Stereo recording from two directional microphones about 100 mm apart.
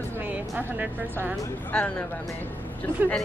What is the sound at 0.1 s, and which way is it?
Music, 15° right (ahead or behind).